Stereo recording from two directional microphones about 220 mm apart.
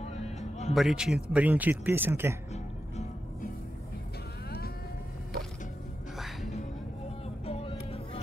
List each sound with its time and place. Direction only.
0.0 s music: 30° left (ahead or behind)
0.7 s a man's voice: centre (ahead or behind)
6.1 s music: centre (ahead or behind)
7.4 s music: 25° left (ahead or behind)